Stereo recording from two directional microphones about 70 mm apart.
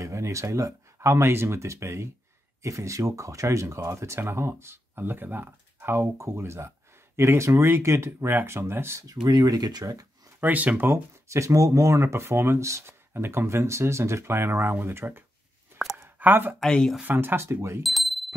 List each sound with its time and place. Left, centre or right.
0.0 s speech: right
9.0 s speech: right
10.4 s speech: right
11.2 s speech: right
13.1 s speech: right
15.7 s a sound: right
16.2 s speech: right
16.5 s speech: centre
17.0 s speech: right
17.8 s a sound: centre